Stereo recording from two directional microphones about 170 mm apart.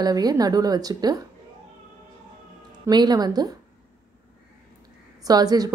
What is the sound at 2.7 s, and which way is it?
Speech, 25° right (ahead or behind).